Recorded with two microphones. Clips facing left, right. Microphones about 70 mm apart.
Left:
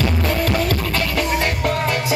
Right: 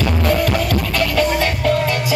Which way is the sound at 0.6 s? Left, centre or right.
Left.